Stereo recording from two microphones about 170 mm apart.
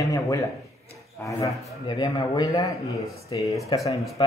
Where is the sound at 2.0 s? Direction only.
25° left (ahead or behind).